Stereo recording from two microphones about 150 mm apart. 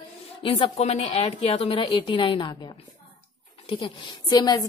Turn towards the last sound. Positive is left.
turn(degrees=30)  # may be behind; listen again after turning